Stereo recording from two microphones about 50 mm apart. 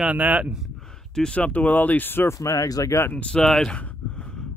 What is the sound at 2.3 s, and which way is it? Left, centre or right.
Speech, left.